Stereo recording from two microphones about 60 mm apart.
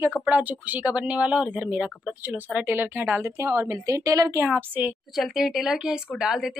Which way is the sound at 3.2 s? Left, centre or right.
Right.